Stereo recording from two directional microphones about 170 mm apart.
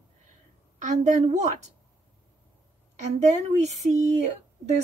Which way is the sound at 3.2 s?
45° right (ahead or behind).